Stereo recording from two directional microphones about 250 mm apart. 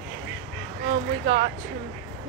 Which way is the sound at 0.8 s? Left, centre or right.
Right.